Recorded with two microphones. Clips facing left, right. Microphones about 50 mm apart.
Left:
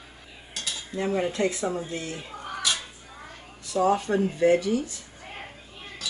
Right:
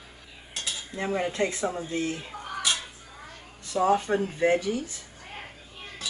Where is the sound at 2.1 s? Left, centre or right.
Centre.